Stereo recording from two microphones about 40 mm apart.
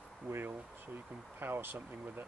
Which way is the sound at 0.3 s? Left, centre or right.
Right.